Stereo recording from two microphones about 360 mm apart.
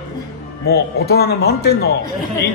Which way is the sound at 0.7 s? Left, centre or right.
Left.